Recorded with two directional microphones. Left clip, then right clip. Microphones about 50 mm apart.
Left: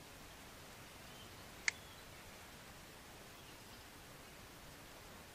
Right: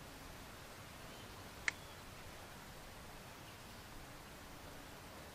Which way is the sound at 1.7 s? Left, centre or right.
Left.